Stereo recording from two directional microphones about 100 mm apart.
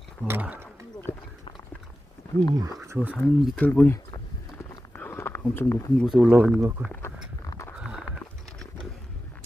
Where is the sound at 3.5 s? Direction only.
15° left (ahead or behind).